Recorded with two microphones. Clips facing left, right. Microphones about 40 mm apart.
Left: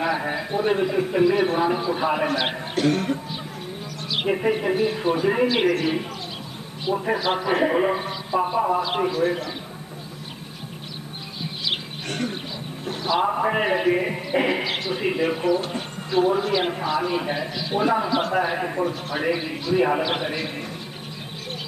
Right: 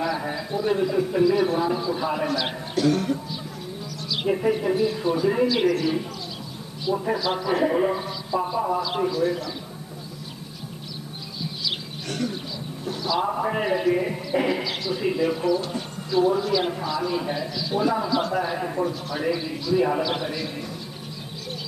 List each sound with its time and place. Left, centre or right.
0.0 s a man's voice: left
11.4 s a sound: left
12.8 s a man's voice: left